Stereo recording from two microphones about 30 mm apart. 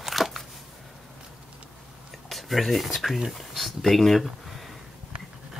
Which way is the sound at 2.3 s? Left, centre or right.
Centre.